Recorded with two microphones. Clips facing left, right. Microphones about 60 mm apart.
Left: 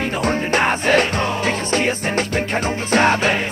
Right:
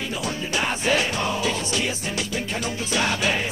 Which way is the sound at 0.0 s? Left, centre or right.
Left.